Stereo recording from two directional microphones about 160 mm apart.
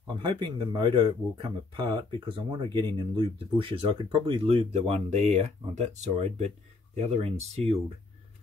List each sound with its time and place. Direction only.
0.0 s speech: 30° right (ahead or behind)